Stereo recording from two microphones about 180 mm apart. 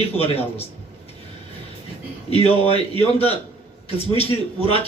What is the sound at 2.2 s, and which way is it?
Speech, 35° left (ahead or behind).